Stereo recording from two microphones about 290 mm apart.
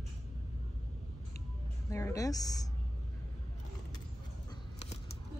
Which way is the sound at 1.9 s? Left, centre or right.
Centre.